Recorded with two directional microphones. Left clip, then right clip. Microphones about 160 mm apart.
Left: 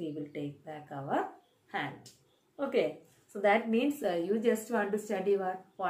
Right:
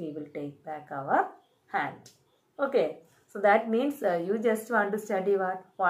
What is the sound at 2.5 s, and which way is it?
A woman's voice, 15° left (ahead or behind).